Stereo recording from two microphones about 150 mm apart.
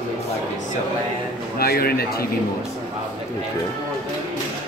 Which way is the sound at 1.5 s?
90° left.